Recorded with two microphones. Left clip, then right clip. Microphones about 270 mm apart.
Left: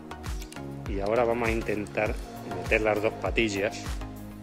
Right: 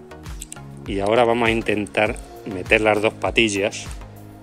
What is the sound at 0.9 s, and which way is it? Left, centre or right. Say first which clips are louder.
Speech: right 8 dB; right.